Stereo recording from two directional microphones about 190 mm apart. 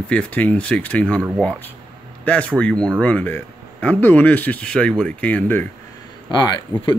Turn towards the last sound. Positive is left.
turn(degrees=20)  # may be behind; listen again after turning